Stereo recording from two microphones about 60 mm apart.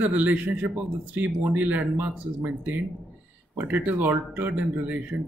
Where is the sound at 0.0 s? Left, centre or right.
Right.